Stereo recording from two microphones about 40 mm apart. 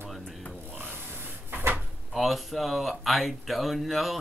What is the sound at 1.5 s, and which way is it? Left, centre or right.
Drawer open or close, right.